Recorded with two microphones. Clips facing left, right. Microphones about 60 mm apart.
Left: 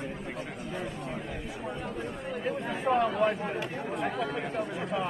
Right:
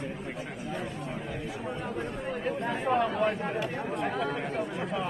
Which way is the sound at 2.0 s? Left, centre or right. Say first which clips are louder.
Right 2 dB; centre.